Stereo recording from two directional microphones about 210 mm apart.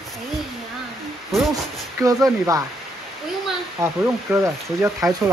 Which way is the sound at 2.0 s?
15° right (ahead or behind).